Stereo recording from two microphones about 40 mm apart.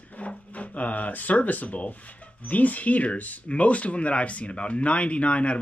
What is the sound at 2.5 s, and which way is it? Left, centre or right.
Speech, left.